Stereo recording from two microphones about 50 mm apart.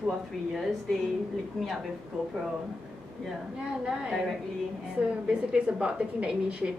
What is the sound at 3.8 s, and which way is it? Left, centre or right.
Speech, centre.